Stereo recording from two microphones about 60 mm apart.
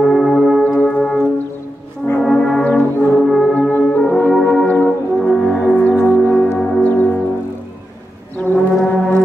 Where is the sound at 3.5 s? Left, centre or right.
Left.